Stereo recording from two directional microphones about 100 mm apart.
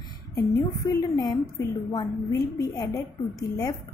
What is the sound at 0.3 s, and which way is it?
A woman's voice, 35° left (ahead or behind).